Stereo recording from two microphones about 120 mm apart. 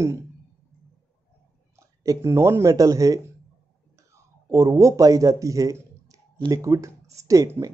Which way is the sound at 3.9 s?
25° right (ahead or behind).